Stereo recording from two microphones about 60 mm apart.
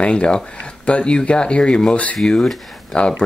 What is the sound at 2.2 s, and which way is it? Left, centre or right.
Speech, centre.